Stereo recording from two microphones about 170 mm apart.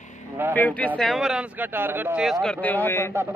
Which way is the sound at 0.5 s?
10° left (ahead or behind).